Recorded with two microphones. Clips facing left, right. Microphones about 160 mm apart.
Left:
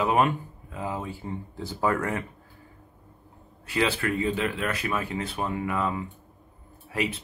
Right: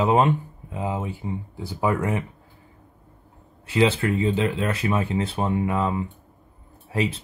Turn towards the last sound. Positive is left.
turn(degrees=-30)  # may be behind; listen again after turning